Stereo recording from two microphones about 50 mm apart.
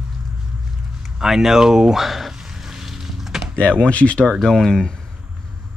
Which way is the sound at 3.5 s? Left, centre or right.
Left.